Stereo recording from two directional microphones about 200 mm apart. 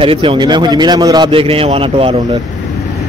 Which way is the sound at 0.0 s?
25° right (ahead or behind).